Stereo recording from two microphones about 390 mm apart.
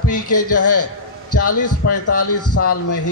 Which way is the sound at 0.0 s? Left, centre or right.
Left.